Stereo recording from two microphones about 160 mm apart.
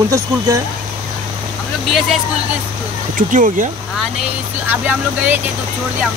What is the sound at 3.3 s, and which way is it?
Speech, 55° right (ahead or behind).